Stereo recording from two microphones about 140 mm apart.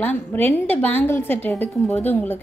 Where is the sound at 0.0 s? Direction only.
15° left (ahead or behind).